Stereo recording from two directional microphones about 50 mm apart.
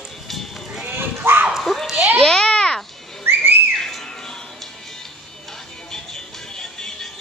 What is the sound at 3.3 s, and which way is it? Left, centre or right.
Whistling, right.